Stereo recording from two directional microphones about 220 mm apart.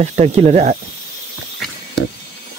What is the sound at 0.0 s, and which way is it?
Speech, 30° right (ahead or behind).